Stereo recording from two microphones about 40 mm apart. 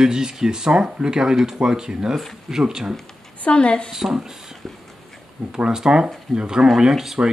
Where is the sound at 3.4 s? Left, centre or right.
Left.